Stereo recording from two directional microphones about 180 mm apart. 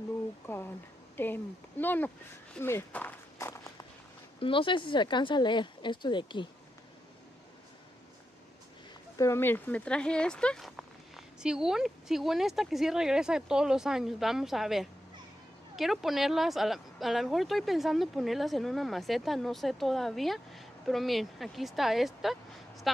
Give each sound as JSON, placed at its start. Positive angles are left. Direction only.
{"t": 1.1, "sound": "speech", "side_deg": 10}
{"t": 4.4, "sound": "speech", "side_deg": 30}
{"t": 9.2, "sound": "speech", "side_deg": 15}